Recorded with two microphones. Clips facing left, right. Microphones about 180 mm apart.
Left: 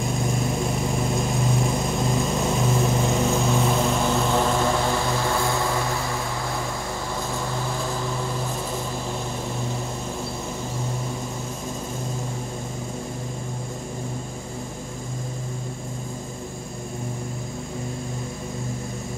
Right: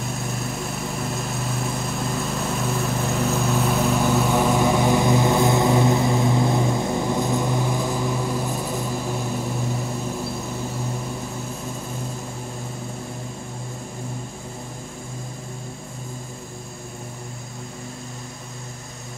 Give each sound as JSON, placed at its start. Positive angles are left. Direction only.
{"t": 1.1, "sound": "vehicle", "side_deg": -5}